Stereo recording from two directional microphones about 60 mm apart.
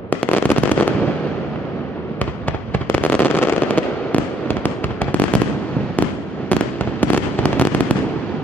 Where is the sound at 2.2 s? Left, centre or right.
Left.